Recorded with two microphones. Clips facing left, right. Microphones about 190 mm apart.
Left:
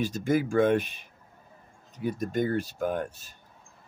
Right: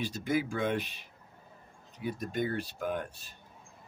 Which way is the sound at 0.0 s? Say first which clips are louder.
Left 5 dB; 45° left (ahead or behind).